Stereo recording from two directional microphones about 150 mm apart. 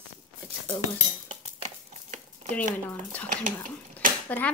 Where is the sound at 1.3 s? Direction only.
50° right (ahead or behind).